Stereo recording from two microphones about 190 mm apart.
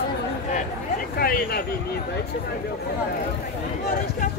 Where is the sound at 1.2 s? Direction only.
55° left (ahead or behind).